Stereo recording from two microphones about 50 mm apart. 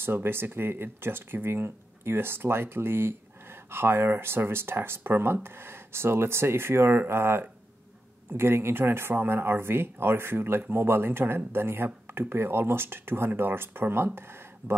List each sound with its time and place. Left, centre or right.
0.0 s speech: right